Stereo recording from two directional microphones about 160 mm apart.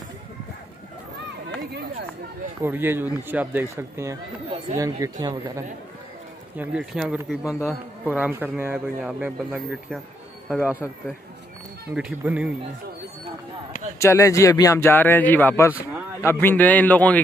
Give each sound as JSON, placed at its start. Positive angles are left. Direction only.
{"t": 2.6, "sound": "a man's voice", "side_deg": -15}
{"t": 6.5, "sound": "a man's voice", "side_deg": -10}
{"t": 13.9, "sound": "speech", "side_deg": 20}